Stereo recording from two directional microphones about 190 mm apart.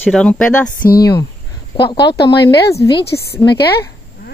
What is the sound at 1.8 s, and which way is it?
Speech, 25° left (ahead or behind).